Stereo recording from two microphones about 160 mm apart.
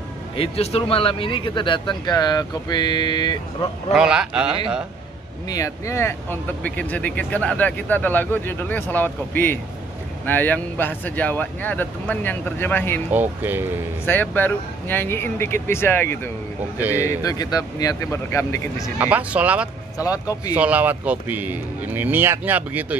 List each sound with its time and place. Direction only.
0.4 s speech: 40° left (ahead or behind)
3.9 s speech: 5° right (ahead or behind)
5.5 s speech: 20° left (ahead or behind)
13.1 s speech: 10° right (ahead or behind)
14.0 s speech: 10° left (ahead or behind)
16.7 s speech: 10° right (ahead or behind)
17.2 s speech: 25° left (ahead or behind)
18.9 s speech: 10° right (ahead or behind)
20.0 s speech: 20° left (ahead or behind)
20.5 s speech: 10° right (ahead or behind)